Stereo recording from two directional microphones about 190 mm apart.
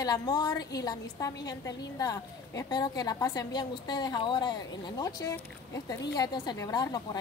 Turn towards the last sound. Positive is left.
turn(degrees=20)  # may be behind; listen again after turning